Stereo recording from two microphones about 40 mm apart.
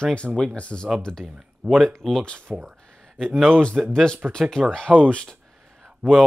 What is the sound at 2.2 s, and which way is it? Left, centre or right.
Speech, left.